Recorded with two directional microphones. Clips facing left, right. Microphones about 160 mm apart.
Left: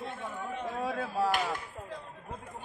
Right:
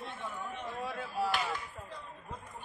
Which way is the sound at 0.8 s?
90° left.